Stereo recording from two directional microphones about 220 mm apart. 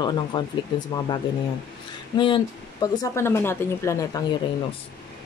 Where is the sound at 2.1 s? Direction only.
20° left (ahead or behind).